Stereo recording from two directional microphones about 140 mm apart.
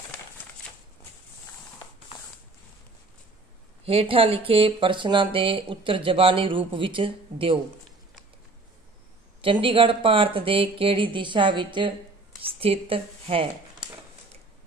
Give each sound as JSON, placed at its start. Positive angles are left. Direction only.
{"t": 3.8, "sound": "speech", "side_deg": -40}
{"t": 9.4, "sound": "speech", "side_deg": -40}